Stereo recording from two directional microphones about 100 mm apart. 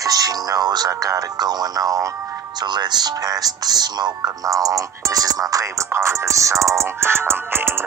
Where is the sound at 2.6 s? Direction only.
45° right (ahead or behind).